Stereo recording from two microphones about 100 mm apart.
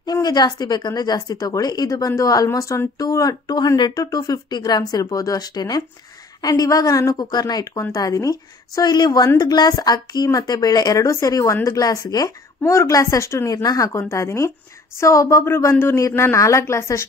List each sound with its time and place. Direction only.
0.0 s a woman's voice: 45° left (ahead or behind); by 17.0 s 30° left (ahead or behind)